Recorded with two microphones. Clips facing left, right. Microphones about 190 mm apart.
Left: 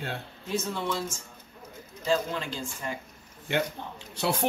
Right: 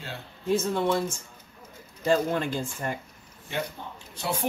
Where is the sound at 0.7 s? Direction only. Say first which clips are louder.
Right 6 dB; 55° right (ahead or behind).